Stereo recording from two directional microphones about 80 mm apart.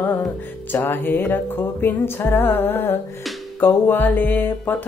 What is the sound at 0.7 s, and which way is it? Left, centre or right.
Music, left.